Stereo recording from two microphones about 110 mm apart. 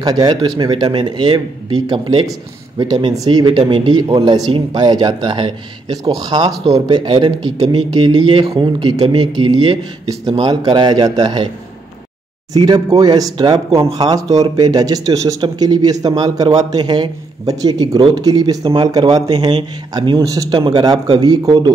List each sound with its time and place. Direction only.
0.0 s speech: 40° right (ahead or behind)
12.5 s speech: 40° right (ahead or behind)